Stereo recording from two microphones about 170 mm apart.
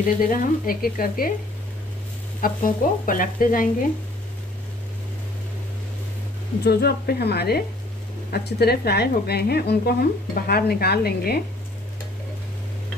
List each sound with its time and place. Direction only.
0.0 s speech: 55° left (ahead or behind)
2.4 s stir: 55° left (ahead or behind)
6.6 s speech: 70° left (ahead or behind)